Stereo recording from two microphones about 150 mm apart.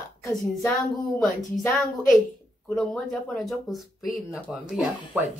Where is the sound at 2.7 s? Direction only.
Centre (ahead or behind).